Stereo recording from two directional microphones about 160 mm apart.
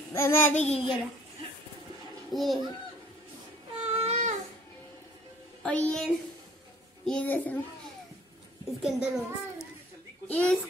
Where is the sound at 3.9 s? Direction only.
45° right (ahead or behind).